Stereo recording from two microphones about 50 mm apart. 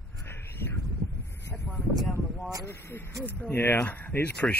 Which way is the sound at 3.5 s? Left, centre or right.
Left.